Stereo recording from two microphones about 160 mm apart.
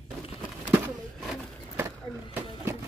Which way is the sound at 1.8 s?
15° right (ahead or behind).